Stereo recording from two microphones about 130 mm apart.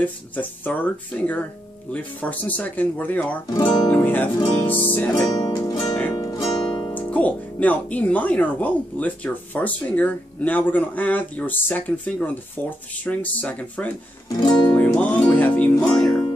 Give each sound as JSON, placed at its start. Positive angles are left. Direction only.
{"t": 0.0, "sound": "speech", "side_deg": 10}
{"t": 3.5, "sound": "music", "side_deg": 30}
{"t": 3.9, "sound": "speech", "side_deg": 15}
{"t": 5.3, "sound": "music", "side_deg": 30}
{"t": 7.0, "sound": "speech", "side_deg": 10}
{"t": 14.4, "sound": "music", "side_deg": 35}
{"t": 14.7, "sound": "music", "side_deg": 10}